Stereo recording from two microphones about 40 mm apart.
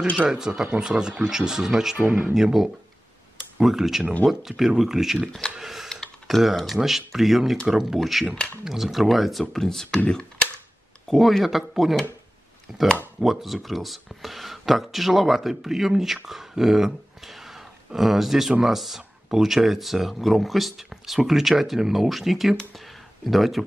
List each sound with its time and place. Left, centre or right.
0.3 s speech: centre
5.6 s a sound: centre
6.3 s speech: centre
10.0 s computer keyboard: left
11.1 s speech: centre